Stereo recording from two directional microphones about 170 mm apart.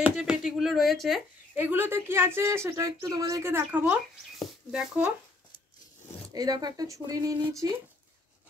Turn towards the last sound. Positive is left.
turn(degrees=-20)  # may be behind; listen again after turning